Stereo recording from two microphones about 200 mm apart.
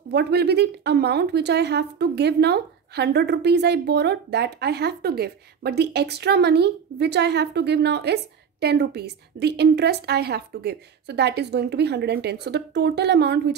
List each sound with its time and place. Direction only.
0.1 s a woman's voice: 55° right (ahead or behind)